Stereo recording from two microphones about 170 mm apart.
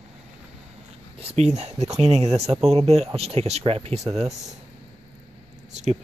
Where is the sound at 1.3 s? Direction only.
40° right (ahead or behind).